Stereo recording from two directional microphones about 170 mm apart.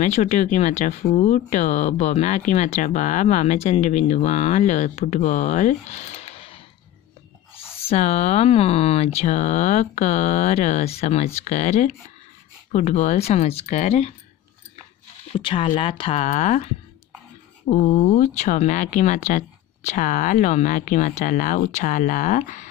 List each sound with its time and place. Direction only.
0.0 s speech: 45° left (ahead or behind)
7.9 s speech: 40° left (ahead or behind)
15.3 s speech: 30° left (ahead or behind)
17.8 s speech: 40° left (ahead or behind)